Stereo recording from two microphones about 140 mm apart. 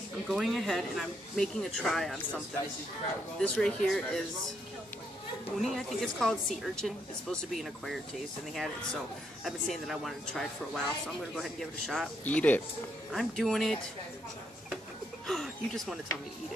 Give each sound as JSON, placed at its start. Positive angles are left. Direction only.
{"t": 0.3, "sound": "speech", "side_deg": 0}
{"t": 5.6, "sound": "speech", "side_deg": 0}
{"t": 15.2, "sound": "speech", "side_deg": 0}